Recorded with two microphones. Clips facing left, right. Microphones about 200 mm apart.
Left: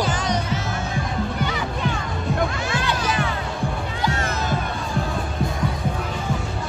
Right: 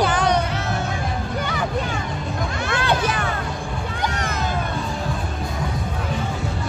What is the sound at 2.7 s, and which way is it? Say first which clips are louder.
Music: right 3 dB; 60° right (ahead or behind).